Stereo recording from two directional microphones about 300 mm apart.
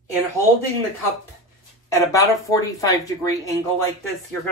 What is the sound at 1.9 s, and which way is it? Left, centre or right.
Speech, centre.